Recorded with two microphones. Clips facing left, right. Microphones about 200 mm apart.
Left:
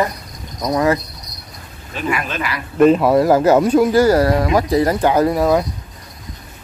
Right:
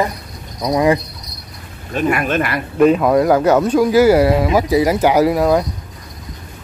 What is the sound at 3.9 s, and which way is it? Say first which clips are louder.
Speech: right 2 dB; 10° right (ahead or behind).